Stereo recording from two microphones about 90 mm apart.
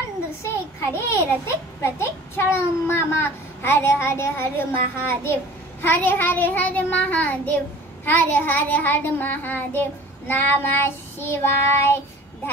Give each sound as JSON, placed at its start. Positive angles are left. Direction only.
{"t": 0.4, "sound": "a child's voice", "side_deg": 30}